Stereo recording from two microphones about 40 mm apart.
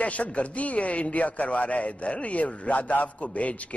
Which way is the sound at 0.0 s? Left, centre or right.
Left.